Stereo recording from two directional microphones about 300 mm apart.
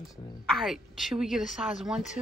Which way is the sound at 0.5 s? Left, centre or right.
Centre.